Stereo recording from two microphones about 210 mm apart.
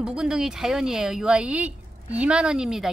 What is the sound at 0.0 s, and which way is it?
Speech, 5° right (ahead or behind).